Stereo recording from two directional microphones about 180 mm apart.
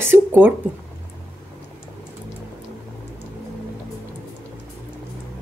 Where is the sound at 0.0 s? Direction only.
10° right (ahead or behind).